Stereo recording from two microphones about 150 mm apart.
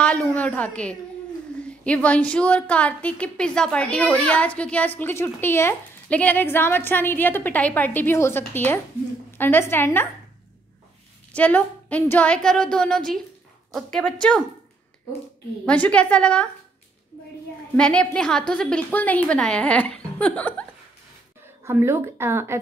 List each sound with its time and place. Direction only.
0.0 s a sound: 10° left (ahead or behind)
1.6 s a woman's voice: 10° left (ahead or behind)
11.3 s a woman's voice: 10° left (ahead or behind)
15.6 s a woman's voice: 10° left (ahead or behind)
17.7 s a woman's voice: 5° left (ahead or behind)
21.6 s speech: 15° right (ahead or behind)